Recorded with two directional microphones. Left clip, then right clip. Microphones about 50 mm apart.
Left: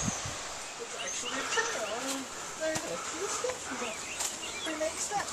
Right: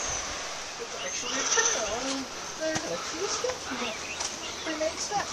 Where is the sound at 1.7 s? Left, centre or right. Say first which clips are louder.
Right 5 dB; right.